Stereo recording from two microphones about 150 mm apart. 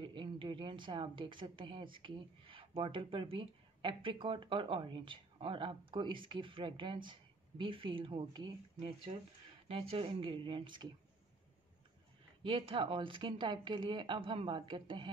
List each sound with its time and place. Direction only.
0.0 s a woman's voice: 35° right (ahead or behind)
12.4 s a woman's voice: 35° right (ahead or behind)